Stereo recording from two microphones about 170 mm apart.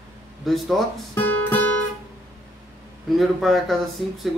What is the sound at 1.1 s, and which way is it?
Music, 10° left (ahead or behind).